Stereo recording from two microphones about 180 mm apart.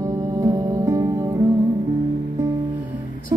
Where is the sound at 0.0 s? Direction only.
20° right (ahead or behind).